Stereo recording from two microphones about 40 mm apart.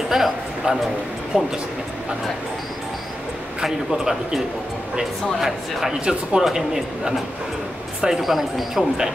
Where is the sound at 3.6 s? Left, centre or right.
Centre.